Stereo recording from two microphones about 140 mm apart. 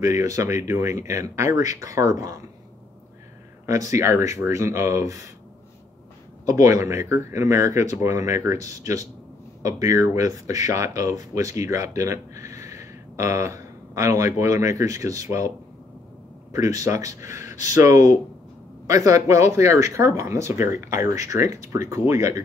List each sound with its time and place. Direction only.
0.0 s speech: 20° right (ahead or behind)
3.6 s speech: 20° right (ahead or behind)
6.4 s speech: 25° right (ahead or behind)
16.5 s speech: 25° right (ahead or behind)